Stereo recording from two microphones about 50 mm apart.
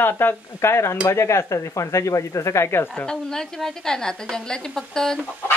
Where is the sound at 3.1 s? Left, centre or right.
Centre.